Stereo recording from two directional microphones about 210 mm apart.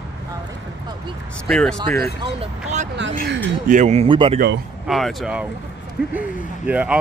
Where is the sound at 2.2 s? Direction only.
30° right (ahead or behind).